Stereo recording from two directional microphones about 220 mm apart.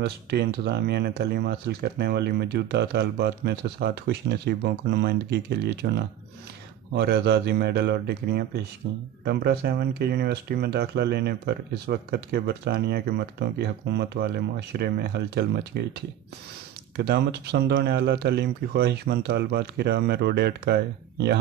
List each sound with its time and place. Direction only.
0.0 s speech: 50° right (ahead or behind)